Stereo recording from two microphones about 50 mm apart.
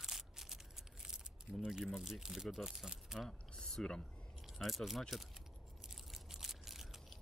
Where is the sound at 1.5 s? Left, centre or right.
Centre.